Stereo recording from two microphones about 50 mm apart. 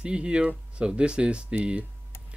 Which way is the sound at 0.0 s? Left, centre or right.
Right.